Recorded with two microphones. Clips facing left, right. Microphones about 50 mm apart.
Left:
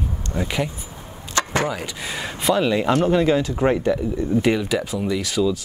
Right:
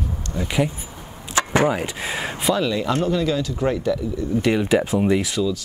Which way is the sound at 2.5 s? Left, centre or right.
Left.